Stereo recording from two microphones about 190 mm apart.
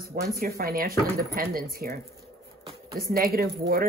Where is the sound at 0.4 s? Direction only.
50° right (ahead or behind).